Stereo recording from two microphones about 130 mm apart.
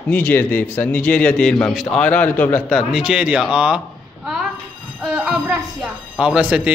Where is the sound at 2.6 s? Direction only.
Centre (ahead or behind).